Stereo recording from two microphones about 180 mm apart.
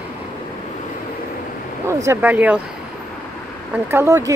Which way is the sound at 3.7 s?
15° right (ahead or behind).